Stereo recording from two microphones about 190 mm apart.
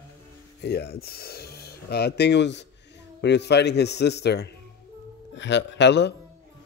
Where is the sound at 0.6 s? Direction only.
60° left (ahead or behind).